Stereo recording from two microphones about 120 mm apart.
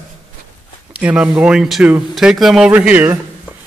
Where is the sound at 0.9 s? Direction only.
10° right (ahead or behind).